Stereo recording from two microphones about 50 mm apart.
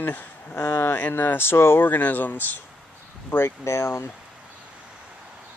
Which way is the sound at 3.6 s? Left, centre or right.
Left.